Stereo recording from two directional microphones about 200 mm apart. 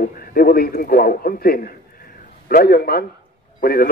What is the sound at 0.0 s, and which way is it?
A man's voice, 45° left (ahead or behind).